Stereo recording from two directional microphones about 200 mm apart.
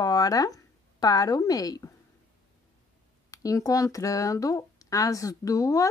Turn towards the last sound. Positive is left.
turn(degrees=15)  # may be behind; listen again after turning